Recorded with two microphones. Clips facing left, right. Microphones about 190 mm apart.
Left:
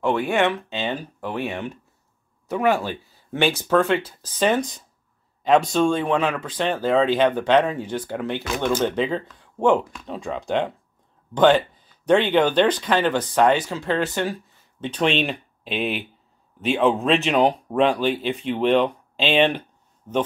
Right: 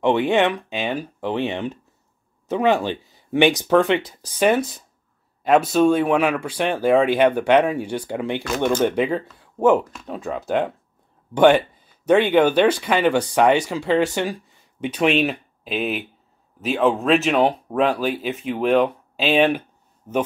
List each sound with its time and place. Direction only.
0.0 s speech: 20° right (ahead or behind)